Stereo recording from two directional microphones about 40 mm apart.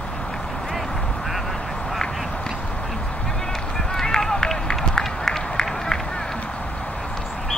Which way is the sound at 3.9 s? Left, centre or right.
Centre.